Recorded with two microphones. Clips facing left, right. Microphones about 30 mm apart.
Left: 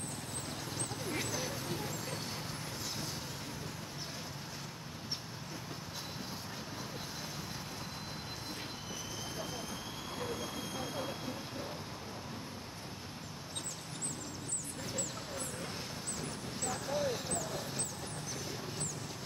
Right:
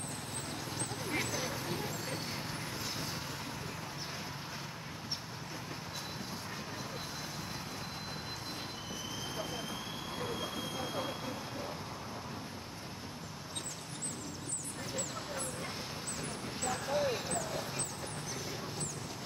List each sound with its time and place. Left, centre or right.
0.7 s vehicle: centre
10.3 s train: right
16.2 s vehicle: centre